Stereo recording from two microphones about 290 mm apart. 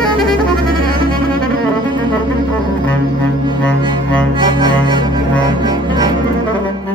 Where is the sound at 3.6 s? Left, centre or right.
Centre.